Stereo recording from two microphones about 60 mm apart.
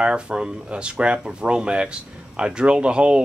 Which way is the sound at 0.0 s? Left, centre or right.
Centre.